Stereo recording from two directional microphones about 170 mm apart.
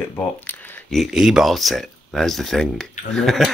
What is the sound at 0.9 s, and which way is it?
Speech, centre (ahead or behind).